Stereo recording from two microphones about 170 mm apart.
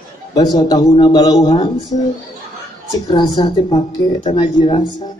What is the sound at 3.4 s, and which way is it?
Speech, 25° left (ahead or behind).